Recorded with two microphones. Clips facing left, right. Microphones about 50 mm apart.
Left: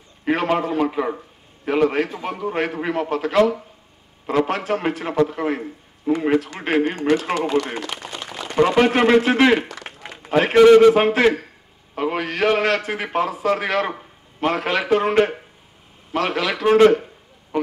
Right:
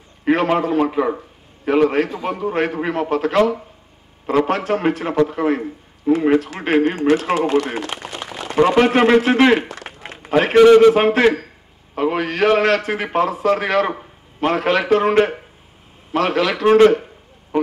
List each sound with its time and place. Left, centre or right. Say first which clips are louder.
0.2 s a man's voice: right 3 dB; centre
8.1 s a sound: right 2 dB; right
8.4 s a man's voice: right 2 dB; centre